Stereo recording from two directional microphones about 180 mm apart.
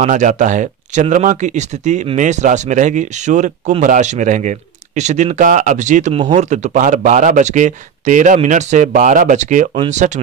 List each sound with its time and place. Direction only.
0.0 s speech: 45° right (ahead or behind)